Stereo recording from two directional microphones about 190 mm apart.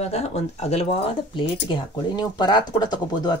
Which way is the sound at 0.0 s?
35° left (ahead or behind).